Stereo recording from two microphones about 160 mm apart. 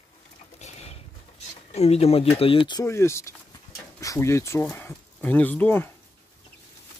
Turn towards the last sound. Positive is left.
turn(degrees=15)  # may be behind; listen again after turning